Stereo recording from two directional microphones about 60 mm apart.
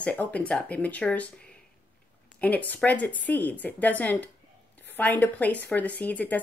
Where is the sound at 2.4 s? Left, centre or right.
Left.